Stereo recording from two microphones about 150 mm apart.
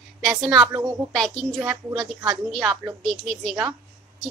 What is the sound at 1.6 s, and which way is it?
Speech, 10° right (ahead or behind).